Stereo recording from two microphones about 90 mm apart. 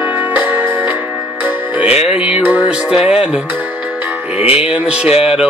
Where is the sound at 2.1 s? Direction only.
15° right (ahead or behind).